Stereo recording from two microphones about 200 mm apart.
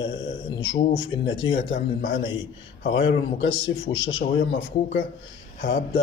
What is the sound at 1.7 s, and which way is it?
Speech, 45° left (ahead or behind).